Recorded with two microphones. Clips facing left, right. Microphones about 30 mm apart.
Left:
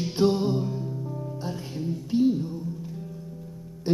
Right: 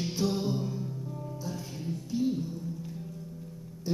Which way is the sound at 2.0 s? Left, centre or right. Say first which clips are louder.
Left 7 dB; left.